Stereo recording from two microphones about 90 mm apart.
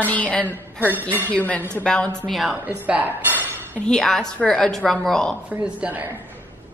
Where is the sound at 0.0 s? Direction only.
15° left (ahead or behind).